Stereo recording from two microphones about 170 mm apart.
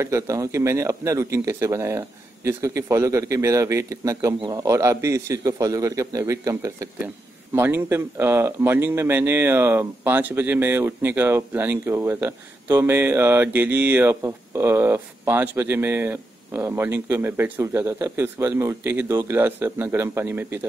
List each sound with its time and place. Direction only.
0.0 s a man's voice: 15° right (ahead or behind)